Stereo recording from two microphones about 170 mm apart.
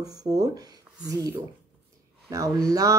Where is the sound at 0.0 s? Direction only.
20° right (ahead or behind).